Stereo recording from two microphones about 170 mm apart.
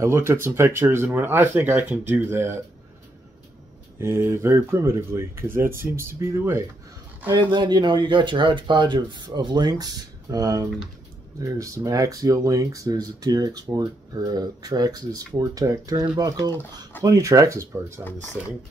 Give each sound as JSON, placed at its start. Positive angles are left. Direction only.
{"t": 0.0, "sound": "speech", "side_deg": -15}
{"t": 4.0, "sound": "speech", "side_deg": -15}
{"t": 7.3, "sound": "speech", "side_deg": -25}